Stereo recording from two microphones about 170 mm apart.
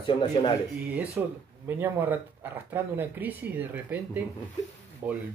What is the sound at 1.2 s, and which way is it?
Speech, 10° right (ahead or behind).